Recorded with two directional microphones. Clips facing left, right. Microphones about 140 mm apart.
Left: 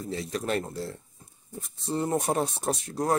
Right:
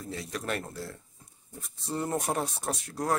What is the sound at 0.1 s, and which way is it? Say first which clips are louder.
Speech: left 5 dB; 25° left (ahead or behind).